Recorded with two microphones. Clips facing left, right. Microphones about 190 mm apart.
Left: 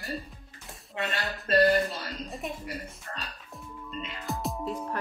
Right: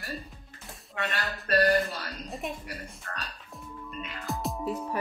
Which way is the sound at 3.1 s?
15° left (ahead or behind).